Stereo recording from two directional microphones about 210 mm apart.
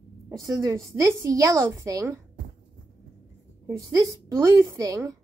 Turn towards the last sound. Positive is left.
turn(degrees=-15)  # may be behind; listen again after turning